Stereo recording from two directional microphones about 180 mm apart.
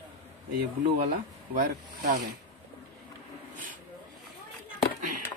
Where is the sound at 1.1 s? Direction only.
50° right (ahead or behind).